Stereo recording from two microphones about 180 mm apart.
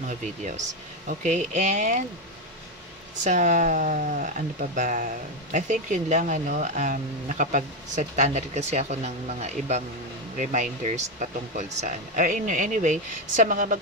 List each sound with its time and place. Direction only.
0.0 s speech: 40° right (ahead or behind)
3.3 s speech: 45° right (ahead or behind)